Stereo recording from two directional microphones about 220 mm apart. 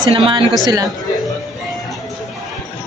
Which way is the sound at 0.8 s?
Centre (ahead or behind).